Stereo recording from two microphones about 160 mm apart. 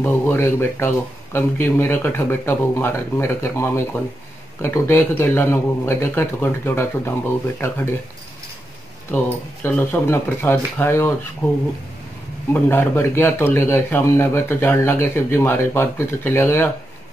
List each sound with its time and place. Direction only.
0.0 s speech: 15° left (ahead or behind)
9.1 s speech: 10° left (ahead or behind)
12.6 s speech: 15° left (ahead or behind)